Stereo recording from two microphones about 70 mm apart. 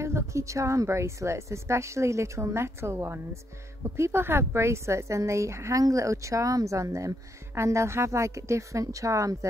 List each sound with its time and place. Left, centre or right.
0.0 s speech: right